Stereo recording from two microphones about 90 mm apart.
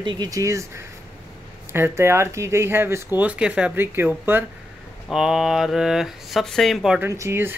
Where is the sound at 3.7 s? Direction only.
25° right (ahead or behind).